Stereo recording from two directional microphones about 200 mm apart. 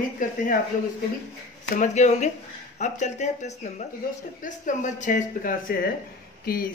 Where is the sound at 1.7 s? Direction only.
35° left (ahead or behind).